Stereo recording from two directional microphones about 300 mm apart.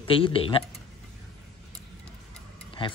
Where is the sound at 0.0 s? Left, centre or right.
Centre.